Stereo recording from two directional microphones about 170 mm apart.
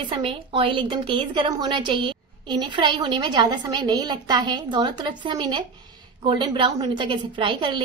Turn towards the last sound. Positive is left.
turn(degrees=-30)  # may be behind; listen again after turning